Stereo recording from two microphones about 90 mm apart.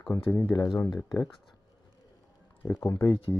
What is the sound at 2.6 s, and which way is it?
Speech, 25° left (ahead or behind).